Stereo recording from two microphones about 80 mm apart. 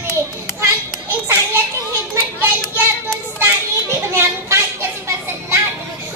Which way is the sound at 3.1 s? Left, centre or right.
Right.